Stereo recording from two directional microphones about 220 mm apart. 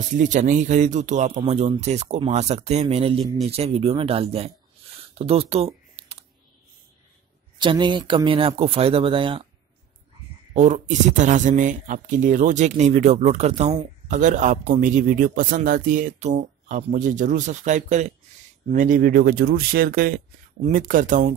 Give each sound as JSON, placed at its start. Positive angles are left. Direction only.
{"t": 0.2, "sound": "a man's voice", "side_deg": -35}
{"t": 5.9, "sound": "typing", "side_deg": -25}
{"t": 7.5, "sound": "speech", "side_deg": -20}
{"t": 10.5, "sound": "a man's voice", "side_deg": -30}